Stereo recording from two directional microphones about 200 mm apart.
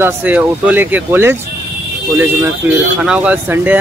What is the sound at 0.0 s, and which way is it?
Speech, 10° right (ahead or behind).